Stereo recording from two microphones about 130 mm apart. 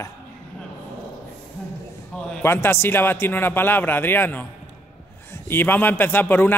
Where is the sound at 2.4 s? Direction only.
15° left (ahead or behind).